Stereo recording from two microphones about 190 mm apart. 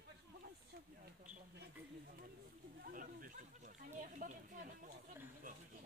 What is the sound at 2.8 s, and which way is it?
Speech, 45° right (ahead or behind).